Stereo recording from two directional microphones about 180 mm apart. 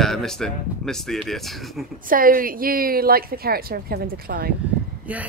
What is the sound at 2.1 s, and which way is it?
A woman's voice, 50° right (ahead or behind).